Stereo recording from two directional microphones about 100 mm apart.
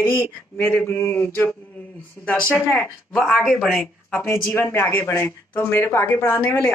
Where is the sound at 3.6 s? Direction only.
5° right (ahead or behind).